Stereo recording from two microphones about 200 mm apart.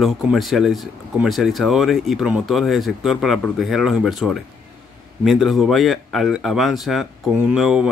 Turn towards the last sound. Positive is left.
turn(degrees=-5)  # may be behind; listen again after turning